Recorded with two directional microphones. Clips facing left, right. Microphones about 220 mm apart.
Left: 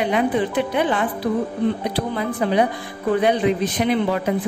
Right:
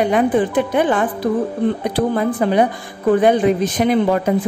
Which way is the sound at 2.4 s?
50° right (ahead or behind).